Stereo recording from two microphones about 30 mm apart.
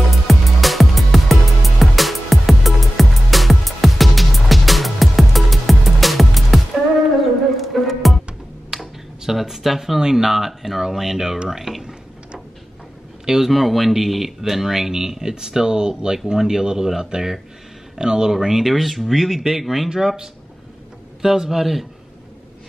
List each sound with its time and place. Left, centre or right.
0.3 s music: centre
8.7 s a sound: centre
9.9 s speech: centre
13.2 s a man's voice: centre
13.5 s speech: centre; by 18.3 s right
18.3 s speech: centre
19.9 s speech: centre